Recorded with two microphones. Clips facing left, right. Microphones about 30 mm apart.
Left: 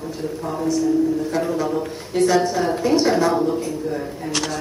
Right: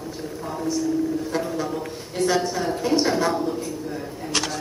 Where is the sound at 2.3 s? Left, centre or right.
Centre.